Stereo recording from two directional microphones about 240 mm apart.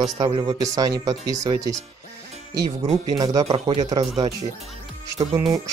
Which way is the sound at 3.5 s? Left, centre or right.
Right.